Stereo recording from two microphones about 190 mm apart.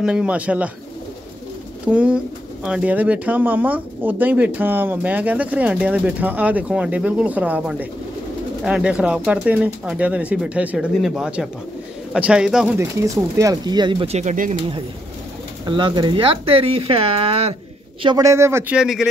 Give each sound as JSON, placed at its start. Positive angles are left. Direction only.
{"t": 0.0, "sound": "speech", "side_deg": -5}
{"t": 1.9, "sound": "speech", "side_deg": -5}
{"t": 15.6, "sound": "speech", "side_deg": -25}
{"t": 18.0, "sound": "speech", "side_deg": -20}